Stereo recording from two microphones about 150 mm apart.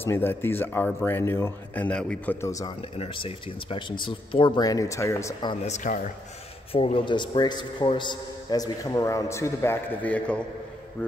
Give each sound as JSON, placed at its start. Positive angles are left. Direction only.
{"t": 0.0, "sound": "speech", "side_deg": 15}
{"t": 2.4, "sound": "a man's voice", "side_deg": 20}
{"t": 3.0, "sound": "speech", "side_deg": 40}
{"t": 5.5, "sound": "speech", "side_deg": 45}
{"t": 6.7, "sound": "a man's voice", "side_deg": 35}